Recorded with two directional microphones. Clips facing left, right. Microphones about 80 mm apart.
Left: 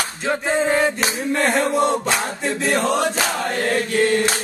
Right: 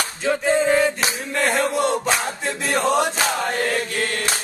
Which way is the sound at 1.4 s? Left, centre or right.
Left.